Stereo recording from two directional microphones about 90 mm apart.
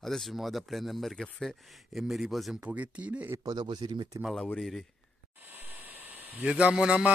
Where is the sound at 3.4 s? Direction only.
50° right (ahead or behind).